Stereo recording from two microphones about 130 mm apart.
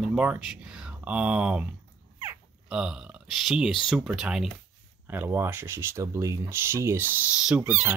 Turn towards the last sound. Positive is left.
turn(degrees=-10)  # may be behind; listen again after turning